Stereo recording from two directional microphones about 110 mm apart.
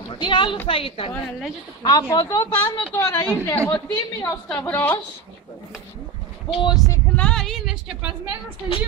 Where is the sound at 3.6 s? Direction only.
15° left (ahead or behind).